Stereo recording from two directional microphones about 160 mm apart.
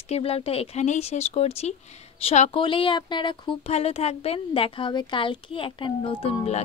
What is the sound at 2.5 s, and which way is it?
Speech, 30° left (ahead or behind).